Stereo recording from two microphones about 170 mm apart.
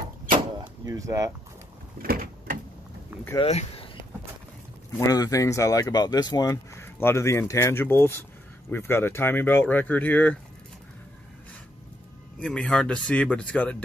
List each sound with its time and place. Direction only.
0.6 s door: 20° right (ahead or behind)
2.0 s a sound: 55° right (ahead or behind)
3.3 s speech: 35° left (ahead or behind)
4.9 s speech: 20° left (ahead or behind)
12.4 s speech: 5° left (ahead or behind)